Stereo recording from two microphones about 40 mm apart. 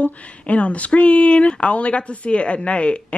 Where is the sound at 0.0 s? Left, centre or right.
Left.